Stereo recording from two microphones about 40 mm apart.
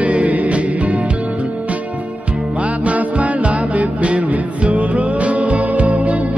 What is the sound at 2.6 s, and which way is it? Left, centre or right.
Music, right.